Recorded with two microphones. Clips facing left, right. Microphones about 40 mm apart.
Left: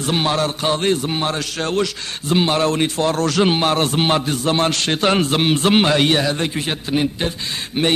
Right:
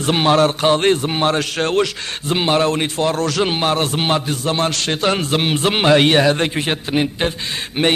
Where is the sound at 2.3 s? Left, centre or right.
Right.